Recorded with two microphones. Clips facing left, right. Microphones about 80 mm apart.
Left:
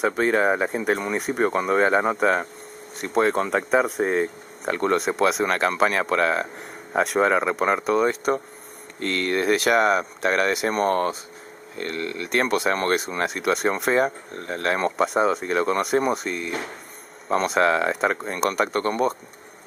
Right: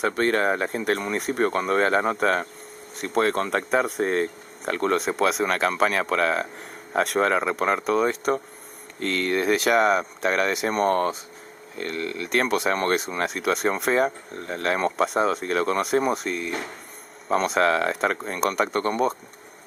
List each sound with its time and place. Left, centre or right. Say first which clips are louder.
0.0 s speech: left 2 dB; centre